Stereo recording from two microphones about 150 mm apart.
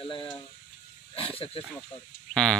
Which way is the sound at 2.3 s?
5° left (ahead or behind).